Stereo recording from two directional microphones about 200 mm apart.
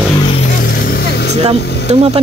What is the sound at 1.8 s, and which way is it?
Speech, 30° right (ahead or behind).